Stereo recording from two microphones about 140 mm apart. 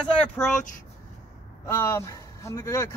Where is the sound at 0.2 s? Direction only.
5° left (ahead or behind).